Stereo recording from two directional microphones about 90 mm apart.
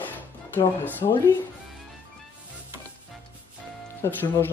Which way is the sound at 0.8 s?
25° left (ahead or behind).